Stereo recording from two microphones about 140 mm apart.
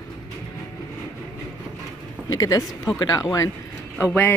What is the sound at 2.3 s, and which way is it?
Speech, 25° left (ahead or behind).